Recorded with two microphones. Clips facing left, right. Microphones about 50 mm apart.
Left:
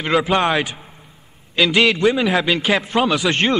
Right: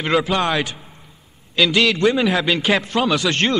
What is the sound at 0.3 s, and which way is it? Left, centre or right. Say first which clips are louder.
A man's voice: left 2 dB; centre.